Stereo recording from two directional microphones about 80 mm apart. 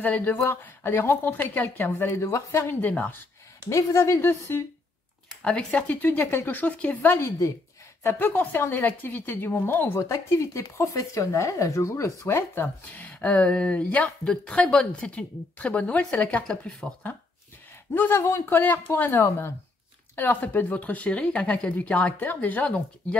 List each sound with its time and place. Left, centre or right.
0.0 s speech: left
2.8 s speech: centre
3.6 s speech: left
5.4 s speech: centre; by 7.5 s left
8.0 s speech: left
9.9 s a woman's voice: left; by 17.1 s centre
17.9 s speech: left
18.6 s speech: left